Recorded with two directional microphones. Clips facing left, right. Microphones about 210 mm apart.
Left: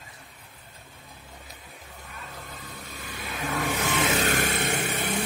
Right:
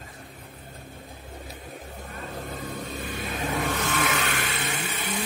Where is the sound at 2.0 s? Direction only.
45° right (ahead or behind).